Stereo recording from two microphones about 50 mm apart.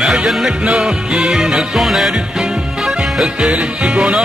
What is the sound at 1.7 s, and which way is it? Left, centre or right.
Music, centre.